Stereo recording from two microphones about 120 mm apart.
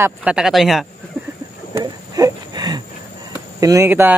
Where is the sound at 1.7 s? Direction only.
30° right (ahead or behind).